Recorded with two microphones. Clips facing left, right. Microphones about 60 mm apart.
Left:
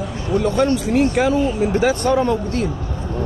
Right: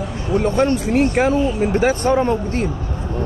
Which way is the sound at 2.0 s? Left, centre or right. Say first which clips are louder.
Right 1 dB; right.